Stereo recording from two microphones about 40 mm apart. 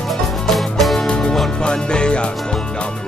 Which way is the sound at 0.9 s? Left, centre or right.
Centre.